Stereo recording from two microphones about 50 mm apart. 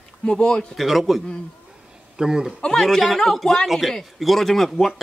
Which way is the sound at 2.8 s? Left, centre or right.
Centre.